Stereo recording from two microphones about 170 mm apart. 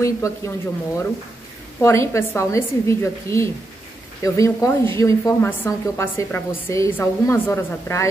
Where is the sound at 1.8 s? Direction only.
15° left (ahead or behind).